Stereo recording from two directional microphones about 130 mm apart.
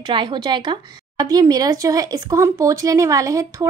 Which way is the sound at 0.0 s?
35° right (ahead or behind).